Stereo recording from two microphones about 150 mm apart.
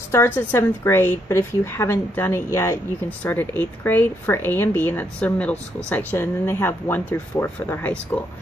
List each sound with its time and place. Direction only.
0.1 s speech: 15° left (ahead or behind)